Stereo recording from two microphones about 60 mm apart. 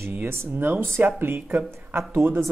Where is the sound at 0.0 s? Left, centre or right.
Right.